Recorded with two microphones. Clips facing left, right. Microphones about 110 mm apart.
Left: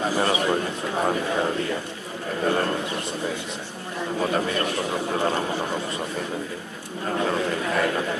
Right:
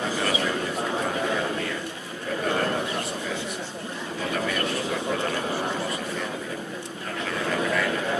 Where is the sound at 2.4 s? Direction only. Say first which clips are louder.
Left 2 dB; 25° left (ahead or behind).